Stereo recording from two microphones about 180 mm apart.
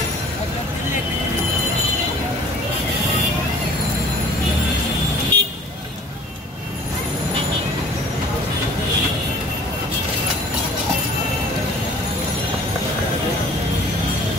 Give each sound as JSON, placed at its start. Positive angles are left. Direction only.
{"t": 5.3, "sound": "vehicle", "side_deg": -25}